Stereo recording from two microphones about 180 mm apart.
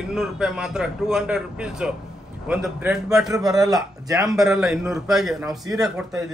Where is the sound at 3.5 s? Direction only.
20° right (ahead or behind).